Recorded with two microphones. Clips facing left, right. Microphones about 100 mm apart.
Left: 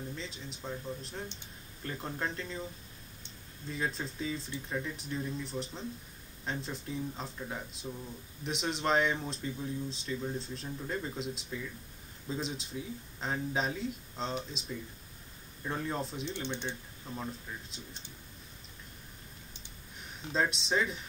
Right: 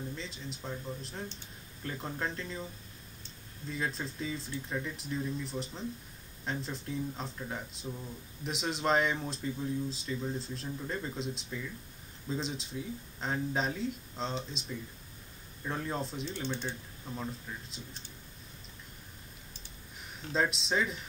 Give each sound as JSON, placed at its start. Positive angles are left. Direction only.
{"t": 0.1, "sound": "speech", "side_deg": 0}
{"t": 3.7, "sound": "speech", "side_deg": 0}
{"t": 16.3, "sound": "speech", "side_deg": 20}
{"t": 17.1, "sound": "speech", "side_deg": 0}
{"t": 20.0, "sound": "speech", "side_deg": 0}